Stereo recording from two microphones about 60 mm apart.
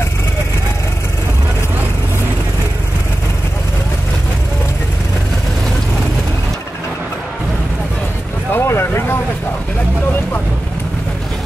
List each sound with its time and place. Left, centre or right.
8.5 s vehicle: left